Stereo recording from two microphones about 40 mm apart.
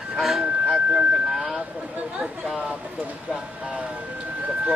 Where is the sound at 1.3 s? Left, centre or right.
Centre.